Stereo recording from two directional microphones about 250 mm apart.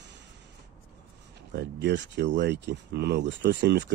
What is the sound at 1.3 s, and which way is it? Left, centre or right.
Speech, right.